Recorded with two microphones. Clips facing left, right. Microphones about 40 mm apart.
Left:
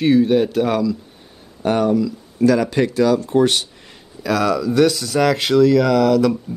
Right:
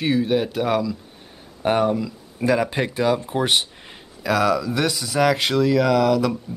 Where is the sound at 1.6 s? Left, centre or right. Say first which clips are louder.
Left 3 dB; centre.